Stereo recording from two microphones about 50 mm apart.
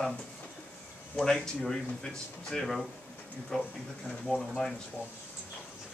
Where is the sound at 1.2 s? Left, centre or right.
Centre.